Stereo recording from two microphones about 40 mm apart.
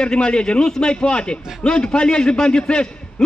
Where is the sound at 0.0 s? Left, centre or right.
Left.